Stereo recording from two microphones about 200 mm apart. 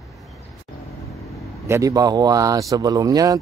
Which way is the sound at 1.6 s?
15° right (ahead or behind).